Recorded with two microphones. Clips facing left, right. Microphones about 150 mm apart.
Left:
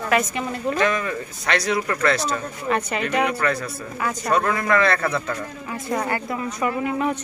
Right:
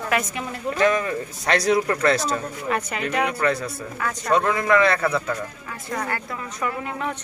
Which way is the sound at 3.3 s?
25° right (ahead or behind).